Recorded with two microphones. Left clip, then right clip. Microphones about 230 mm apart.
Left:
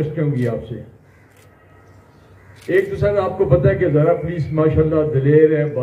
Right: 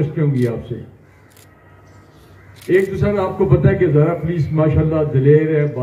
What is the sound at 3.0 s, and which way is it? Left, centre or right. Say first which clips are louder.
A man's voice: left 1 dB; left.